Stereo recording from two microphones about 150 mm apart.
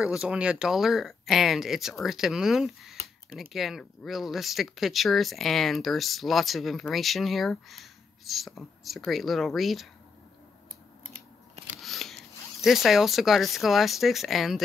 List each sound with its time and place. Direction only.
0.0 s speech: 5° right (ahead or behind)
11.8 s a sound: centre (ahead or behind)
12.6 s speech: centre (ahead or behind)